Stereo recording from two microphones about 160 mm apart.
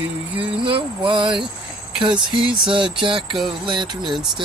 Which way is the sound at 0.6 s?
30° right (ahead or behind).